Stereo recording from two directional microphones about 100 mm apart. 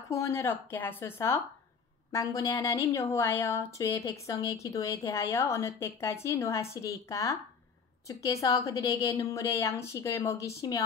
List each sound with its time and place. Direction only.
0.1 s a woman's voice: 30° left (ahead or behind)